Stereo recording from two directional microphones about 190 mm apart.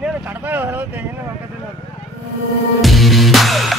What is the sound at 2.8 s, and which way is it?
Music, centre (ahead or behind).